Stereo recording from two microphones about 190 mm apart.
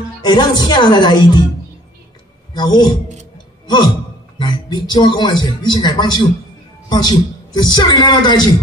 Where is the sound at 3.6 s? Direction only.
25° left (ahead or behind).